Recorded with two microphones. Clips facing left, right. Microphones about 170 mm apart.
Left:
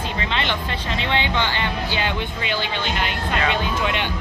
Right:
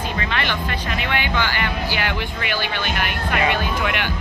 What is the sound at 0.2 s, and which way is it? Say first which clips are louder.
Speech: left 1 dB; 20° left (ahead or behind).